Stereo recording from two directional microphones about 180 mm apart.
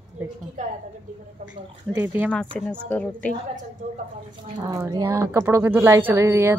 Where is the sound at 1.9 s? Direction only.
10° right (ahead or behind).